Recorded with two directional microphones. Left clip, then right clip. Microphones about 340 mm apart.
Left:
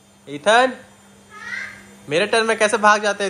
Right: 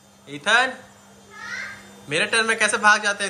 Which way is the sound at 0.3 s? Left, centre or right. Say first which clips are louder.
Left 4 dB; centre.